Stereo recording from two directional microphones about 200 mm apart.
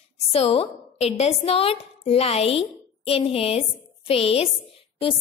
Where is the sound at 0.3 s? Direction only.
30° left (ahead or behind).